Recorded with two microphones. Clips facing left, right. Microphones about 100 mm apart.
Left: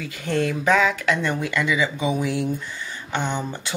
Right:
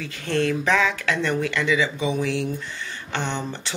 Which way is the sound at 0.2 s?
15° left (ahead or behind).